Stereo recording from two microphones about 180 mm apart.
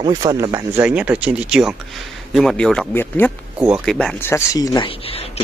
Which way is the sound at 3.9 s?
10° left (ahead or behind).